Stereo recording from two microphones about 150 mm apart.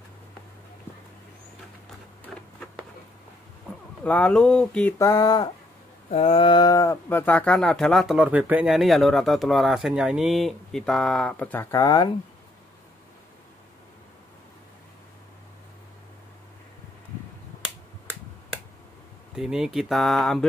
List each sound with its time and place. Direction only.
4.0 s speech: 10° left (ahead or behind)
4.9 s speech: 20° left (ahead or behind)
6.0 s speech: 45° left (ahead or behind); by 8.2 s centre (ahead or behind)
8.2 s speech: 10° right (ahead or behind); by 11.8 s 10° left (ahead or behind)
11.8 s speech: 25° left (ahead or behind)
19.3 s speech: 5° right (ahead or behind)